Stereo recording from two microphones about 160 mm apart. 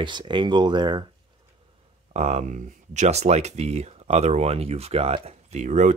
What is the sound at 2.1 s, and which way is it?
Speech, 45° right (ahead or behind).